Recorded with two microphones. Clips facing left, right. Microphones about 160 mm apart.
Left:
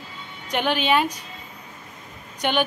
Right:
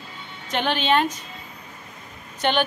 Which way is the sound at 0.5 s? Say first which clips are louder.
Even; 10° left (ahead or behind).